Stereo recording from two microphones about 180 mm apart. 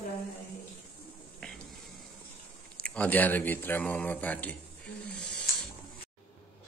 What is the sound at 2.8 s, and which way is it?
Speech, 10° left (ahead or behind).